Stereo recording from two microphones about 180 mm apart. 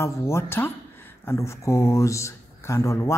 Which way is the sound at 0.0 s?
15° left (ahead or behind).